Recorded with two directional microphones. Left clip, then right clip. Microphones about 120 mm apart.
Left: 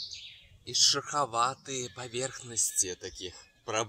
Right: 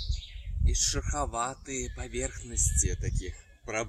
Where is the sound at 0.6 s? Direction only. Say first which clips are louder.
Left 6 dB; 25° right (ahead or behind).